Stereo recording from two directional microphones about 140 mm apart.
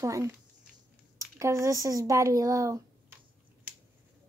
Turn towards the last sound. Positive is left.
turn(degrees=-25)  # may be behind; listen again after turning